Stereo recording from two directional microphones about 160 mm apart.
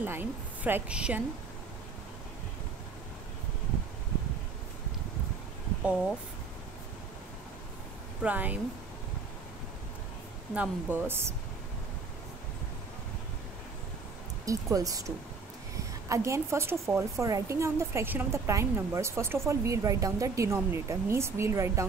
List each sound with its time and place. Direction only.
0.0 s a woman's voice: 10° right (ahead or behind)
8.2 s a woman's voice: 10° right (ahead or behind)
10.5 s a woman's voice: 10° right (ahead or behind)
14.4 s a woman's voice: 20° right (ahead or behind)